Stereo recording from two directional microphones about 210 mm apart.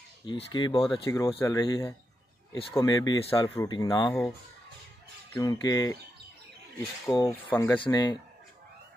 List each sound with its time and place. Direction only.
0.5 s speech: 20° left (ahead or behind)
5.3 s speech: 15° left (ahead or behind)
7.2 s speech: 20° left (ahead or behind)
7.5 s speech: 10° left (ahead or behind)